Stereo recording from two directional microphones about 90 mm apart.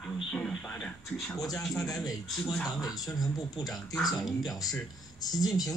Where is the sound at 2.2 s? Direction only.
Centre (ahead or behind).